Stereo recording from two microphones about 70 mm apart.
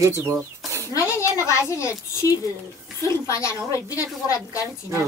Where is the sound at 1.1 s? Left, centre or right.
Left.